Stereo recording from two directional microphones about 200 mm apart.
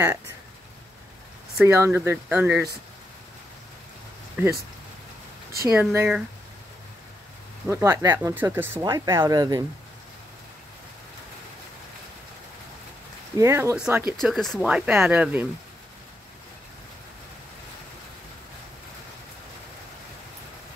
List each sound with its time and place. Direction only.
1.6 s speech: 10° right (ahead or behind)
4.4 s speech: 10° right (ahead or behind)
5.6 s speech: 15° right (ahead or behind)
5.9 s speech: 5° right (ahead or behind)
7.6 s speech: 15° right (ahead or behind)
13.4 s speech: 15° right (ahead or behind)